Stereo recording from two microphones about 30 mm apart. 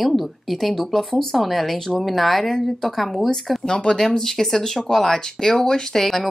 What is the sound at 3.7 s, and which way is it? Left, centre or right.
Speech, left.